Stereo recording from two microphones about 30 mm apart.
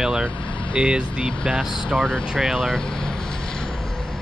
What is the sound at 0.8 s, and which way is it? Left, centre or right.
Speech, right.